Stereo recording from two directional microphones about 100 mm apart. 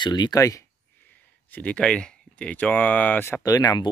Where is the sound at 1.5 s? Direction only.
15° left (ahead or behind).